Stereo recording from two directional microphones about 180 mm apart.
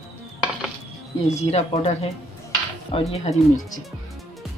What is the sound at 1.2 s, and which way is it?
Speech, 35° left (ahead or behind).